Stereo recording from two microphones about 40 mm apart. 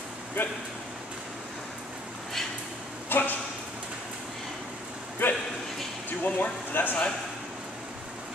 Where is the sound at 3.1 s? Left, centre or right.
Left.